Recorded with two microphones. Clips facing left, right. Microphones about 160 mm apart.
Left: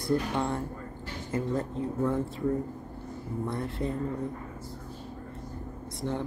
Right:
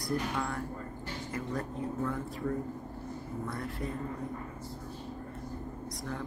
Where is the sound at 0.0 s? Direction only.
25° left (ahead or behind).